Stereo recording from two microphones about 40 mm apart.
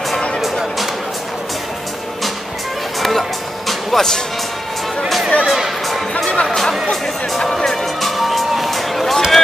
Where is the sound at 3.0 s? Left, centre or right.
Centre.